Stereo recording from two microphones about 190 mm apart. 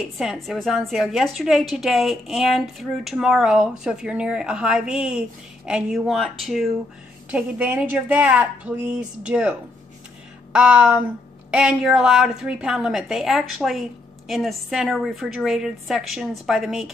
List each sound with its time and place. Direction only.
0.2 s a woman's voice: centre (ahead or behind)